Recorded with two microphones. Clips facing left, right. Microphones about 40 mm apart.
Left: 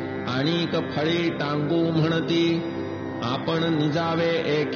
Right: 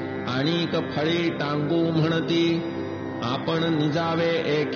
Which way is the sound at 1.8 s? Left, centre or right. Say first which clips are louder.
Even; centre.